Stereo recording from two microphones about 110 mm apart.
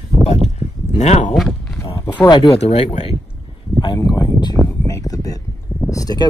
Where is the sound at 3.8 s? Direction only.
40° left (ahead or behind).